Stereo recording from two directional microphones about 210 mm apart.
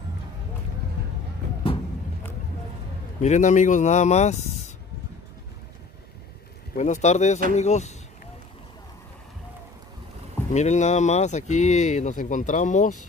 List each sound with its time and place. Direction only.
3.2 s speech: 35° left (ahead or behind)
6.7 s speech: 35° left (ahead or behind)
10.5 s speech: 35° left (ahead or behind)